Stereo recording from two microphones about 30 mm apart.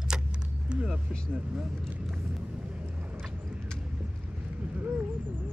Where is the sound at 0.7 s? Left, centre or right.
Right.